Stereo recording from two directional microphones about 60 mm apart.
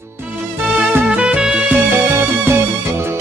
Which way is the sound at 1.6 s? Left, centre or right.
Right.